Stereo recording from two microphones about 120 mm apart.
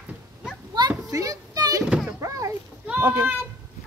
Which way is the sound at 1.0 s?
30° right (ahead or behind).